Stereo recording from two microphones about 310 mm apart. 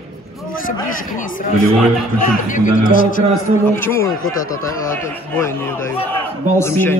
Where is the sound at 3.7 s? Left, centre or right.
Centre.